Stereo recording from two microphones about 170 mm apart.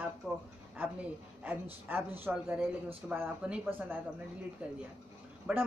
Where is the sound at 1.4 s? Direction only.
10° right (ahead or behind).